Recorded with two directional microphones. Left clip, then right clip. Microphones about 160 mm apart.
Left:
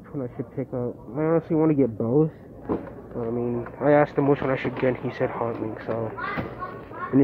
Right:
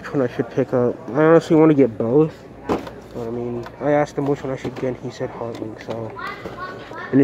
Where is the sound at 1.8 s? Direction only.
20° right (ahead or behind).